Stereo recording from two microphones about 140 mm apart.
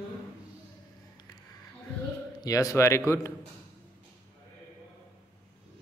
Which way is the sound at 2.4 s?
25° left (ahead or behind).